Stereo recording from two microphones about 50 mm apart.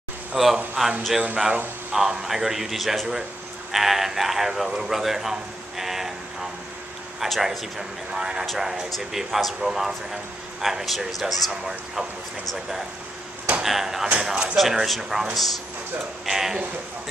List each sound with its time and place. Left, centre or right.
0.3 s a man's voice: centre
7.2 s a man's voice: centre
13.6 s speech: centre
14.1 s speech: centre
14.6 s speech: centre